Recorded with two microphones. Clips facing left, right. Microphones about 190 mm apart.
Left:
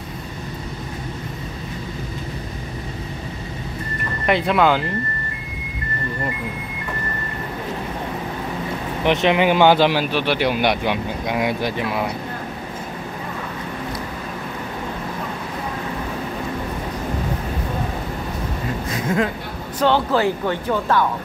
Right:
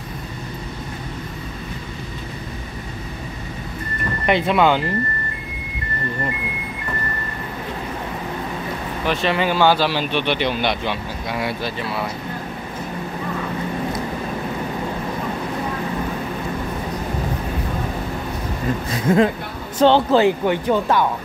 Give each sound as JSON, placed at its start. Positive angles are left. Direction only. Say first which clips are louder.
{"t": 4.3, "sound": "speech", "louder": "even", "side_deg": 0}
{"t": 9.0, "sound": "speech", "louder": "left 4 dB", "side_deg": 20}
{"t": 10.0, "sound": "speech", "louder": "left 1 dB", "side_deg": 5}
{"t": 19.1, "sound": "a man's voice", "louder": "right 6 dB", "side_deg": -35}